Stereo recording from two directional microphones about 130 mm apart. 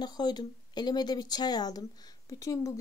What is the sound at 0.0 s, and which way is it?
A woman's voice, 35° left (ahead or behind).